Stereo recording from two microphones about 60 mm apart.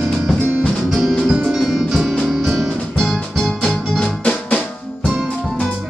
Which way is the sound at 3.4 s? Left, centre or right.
Centre.